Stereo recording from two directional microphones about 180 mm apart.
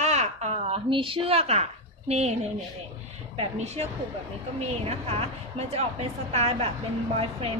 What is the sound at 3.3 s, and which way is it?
A woman's voice, 35° right (ahead or behind).